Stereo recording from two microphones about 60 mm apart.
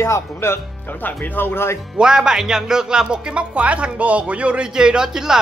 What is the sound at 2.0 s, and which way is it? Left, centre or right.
Speech, centre.